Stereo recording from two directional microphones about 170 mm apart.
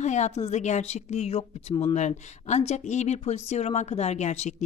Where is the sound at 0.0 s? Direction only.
45° left (ahead or behind).